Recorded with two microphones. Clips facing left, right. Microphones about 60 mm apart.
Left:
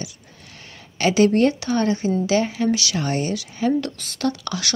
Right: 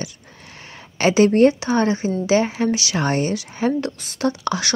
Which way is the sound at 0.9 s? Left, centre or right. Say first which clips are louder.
Right 2 dB; right.